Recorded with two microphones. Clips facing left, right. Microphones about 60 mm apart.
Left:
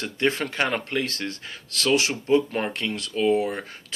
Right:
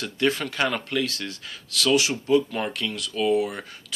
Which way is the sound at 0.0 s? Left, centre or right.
Left.